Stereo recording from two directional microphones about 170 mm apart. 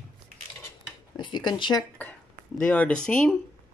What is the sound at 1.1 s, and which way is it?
Speech, 25° left (ahead or behind).